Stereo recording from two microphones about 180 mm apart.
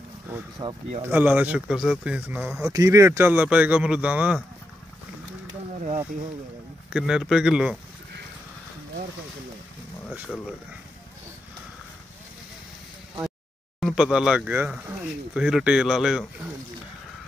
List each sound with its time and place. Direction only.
0.6 s speech: 25° right (ahead or behind)
1.0 s speech: 10° right (ahead or behind)
6.9 s speech: 5° right (ahead or behind)
13.7 s speech: centre (ahead or behind)